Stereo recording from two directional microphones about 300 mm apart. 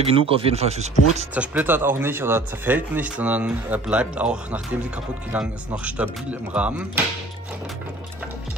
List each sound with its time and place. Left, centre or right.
0.0 s speech: centre
1.3 s speech: centre